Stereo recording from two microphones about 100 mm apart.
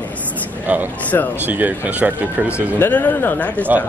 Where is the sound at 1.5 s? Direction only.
15° right (ahead or behind).